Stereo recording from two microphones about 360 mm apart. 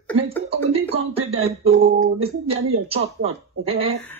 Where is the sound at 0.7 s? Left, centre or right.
Centre.